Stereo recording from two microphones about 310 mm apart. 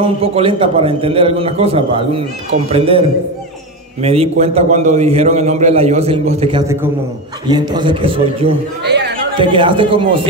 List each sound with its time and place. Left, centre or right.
0.0 s a man's voice: centre
8.8 s chatter: right
9.4 s a man's voice: centre